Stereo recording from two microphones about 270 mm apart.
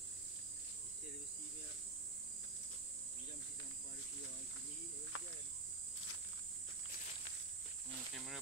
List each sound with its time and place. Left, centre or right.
5.1 s cricket: left